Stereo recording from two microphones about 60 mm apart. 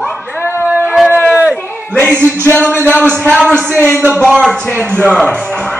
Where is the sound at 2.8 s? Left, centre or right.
Left.